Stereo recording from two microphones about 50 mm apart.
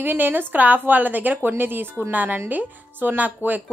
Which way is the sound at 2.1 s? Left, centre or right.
Right.